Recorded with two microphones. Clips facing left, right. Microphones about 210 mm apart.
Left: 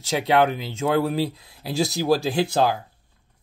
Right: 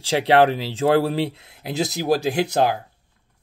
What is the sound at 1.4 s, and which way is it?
Speech, 20° right (ahead or behind).